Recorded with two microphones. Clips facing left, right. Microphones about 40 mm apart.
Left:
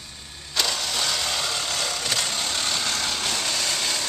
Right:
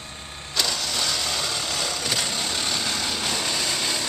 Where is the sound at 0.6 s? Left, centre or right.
Centre.